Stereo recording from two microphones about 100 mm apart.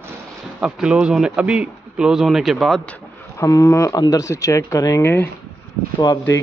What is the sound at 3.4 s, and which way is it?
Speech, 30° left (ahead or behind).